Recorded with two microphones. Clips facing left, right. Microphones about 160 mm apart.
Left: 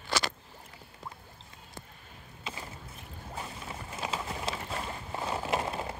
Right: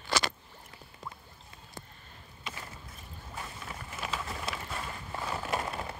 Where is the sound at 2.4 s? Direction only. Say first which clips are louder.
Left 2 dB; 20° left (ahead or behind).